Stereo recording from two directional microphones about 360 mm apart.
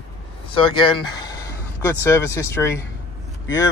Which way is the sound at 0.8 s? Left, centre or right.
Centre.